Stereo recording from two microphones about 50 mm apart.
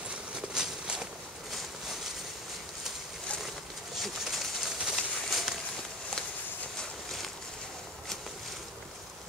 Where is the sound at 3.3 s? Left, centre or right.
Left.